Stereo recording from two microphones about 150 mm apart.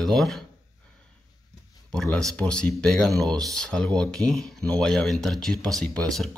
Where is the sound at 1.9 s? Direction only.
5° left (ahead or behind).